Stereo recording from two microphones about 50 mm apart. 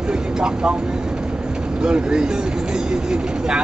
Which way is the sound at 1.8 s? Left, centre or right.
Centre.